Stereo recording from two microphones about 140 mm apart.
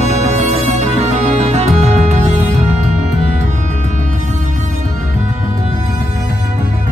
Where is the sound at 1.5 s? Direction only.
55° right (ahead or behind).